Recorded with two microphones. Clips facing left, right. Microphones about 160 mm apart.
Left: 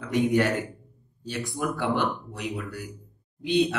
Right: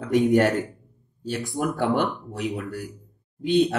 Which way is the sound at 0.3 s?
45° right (ahead or behind).